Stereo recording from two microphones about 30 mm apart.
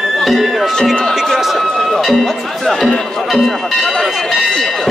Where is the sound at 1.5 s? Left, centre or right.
Centre.